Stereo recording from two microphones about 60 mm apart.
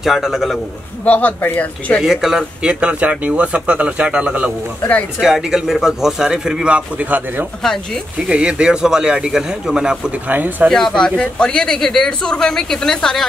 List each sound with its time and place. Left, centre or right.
0.0 s a man's voice: centre
1.0 s speech: left
2.0 s speech: centre
5.2 s a man's voice: centre; by 7.4 s right
7.6 s speech: centre
8.3 s a man's voice: centre
10.2 s speech: right
10.7 s speech: centre